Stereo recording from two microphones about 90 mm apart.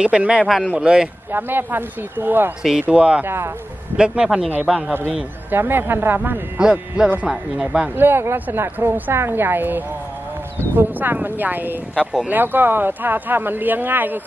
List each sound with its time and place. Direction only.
0.0 s speech: 10° right (ahead or behind)
1.3 s a woman's voice: 25° right (ahead or behind)
2.6 s speech: 10° right (ahead or behind)
3.3 s a woman's voice: 30° right (ahead or behind)
3.9 s speech: 10° right (ahead or behind)
5.5 s a woman's voice: 25° right (ahead or behind)
6.6 s speech: 5° right (ahead or behind)
7.9 s a woman's voice: 20° right (ahead or behind)
11.9 s speech: 5° right (ahead or behind)
12.3 s a woman's voice: 20° right (ahead or behind)